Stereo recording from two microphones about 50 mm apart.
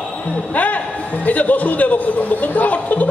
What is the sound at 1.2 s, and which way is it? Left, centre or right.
Speech, left.